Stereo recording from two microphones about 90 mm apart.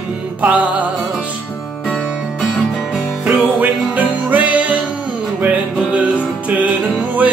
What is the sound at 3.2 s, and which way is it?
Music, 15° right (ahead or behind).